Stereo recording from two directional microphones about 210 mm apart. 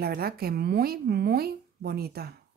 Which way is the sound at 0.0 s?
45° right (ahead or behind).